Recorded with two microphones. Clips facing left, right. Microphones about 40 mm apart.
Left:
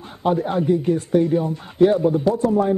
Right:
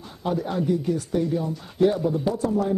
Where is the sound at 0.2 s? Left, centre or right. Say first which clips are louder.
Left 6 dB; left.